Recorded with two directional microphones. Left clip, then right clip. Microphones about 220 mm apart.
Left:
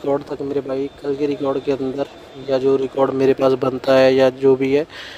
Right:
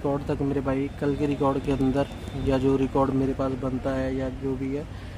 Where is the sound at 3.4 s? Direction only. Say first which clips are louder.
Left 12 dB; 30° left (ahead or behind).